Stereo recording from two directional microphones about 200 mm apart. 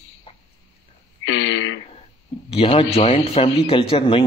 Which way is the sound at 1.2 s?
70° left (ahead or behind).